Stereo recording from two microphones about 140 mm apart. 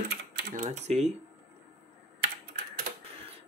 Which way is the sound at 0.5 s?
55° right (ahead or behind).